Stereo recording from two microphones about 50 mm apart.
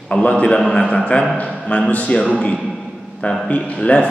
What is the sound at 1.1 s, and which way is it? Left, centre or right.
A man's voice, left.